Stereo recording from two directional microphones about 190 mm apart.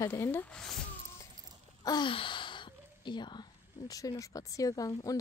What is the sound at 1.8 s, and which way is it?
Speech, 25° left (ahead or behind).